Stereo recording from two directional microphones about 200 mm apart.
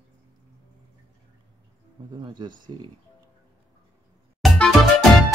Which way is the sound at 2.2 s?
20° right (ahead or behind).